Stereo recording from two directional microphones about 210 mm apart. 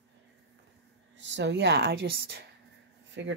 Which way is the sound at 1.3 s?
55° right (ahead or behind).